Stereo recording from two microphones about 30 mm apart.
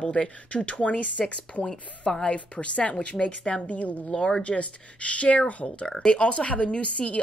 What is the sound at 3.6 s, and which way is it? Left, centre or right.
Speech, left.